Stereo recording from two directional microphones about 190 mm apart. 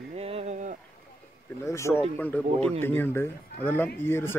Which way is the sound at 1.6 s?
15° left (ahead or behind).